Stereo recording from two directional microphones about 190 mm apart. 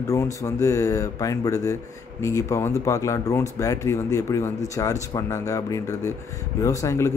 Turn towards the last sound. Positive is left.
turn(degrees=15)  # may be behind; listen again after turning